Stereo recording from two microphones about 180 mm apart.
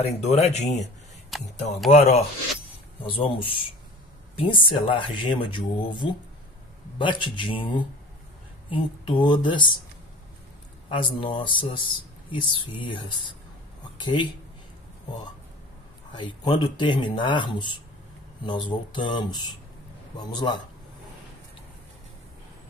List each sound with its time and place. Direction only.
0.0 s speech: 35° left (ahead or behind)
1.3 s speech: centre (ahead or behind)
1.9 s speech: 35° left (ahead or behind)
10.9 s speech: 25° left (ahead or behind)
16.1 s speech: 25° left (ahead or behind)